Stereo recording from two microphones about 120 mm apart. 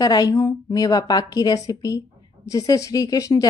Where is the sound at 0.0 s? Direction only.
30° left (ahead or behind).